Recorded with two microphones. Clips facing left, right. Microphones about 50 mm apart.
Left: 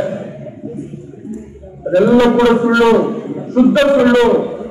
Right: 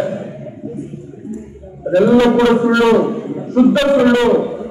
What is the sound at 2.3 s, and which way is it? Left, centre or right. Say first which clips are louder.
A man's voice: left 1 dB; centre.